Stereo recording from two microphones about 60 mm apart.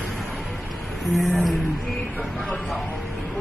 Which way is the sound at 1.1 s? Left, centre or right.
Centre.